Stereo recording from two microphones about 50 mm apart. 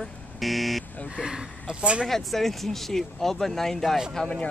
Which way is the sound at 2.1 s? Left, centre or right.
Centre.